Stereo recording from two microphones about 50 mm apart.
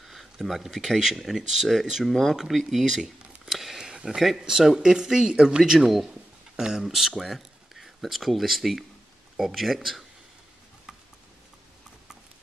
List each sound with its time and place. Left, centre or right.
0.0 s speech: centre
2.8 s speech: centre
3.4 s a sound: centre
4.4 s speech: centre
5.6 s speech: centre